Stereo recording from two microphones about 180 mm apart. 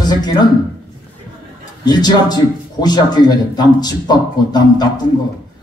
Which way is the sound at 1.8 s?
25° left (ahead or behind).